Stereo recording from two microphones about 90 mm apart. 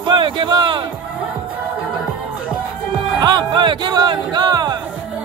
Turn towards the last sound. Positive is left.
turn(degrees=-50)  # may be behind; listen again after turning